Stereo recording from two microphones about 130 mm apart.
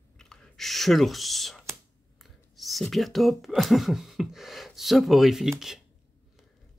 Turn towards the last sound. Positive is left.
turn(degrees=0)  # may be behind; listen again after turning